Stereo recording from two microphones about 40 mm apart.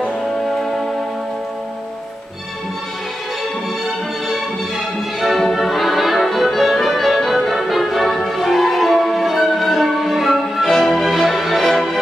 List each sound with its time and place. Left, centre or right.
3.8 s music: centre